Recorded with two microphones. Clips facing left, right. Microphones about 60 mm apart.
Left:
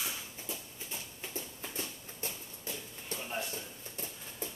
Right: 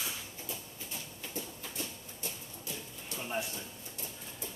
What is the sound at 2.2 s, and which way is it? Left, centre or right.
Music, left.